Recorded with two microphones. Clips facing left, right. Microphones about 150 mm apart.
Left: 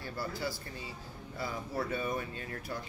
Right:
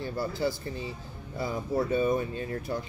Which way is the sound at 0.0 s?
25° right (ahead or behind).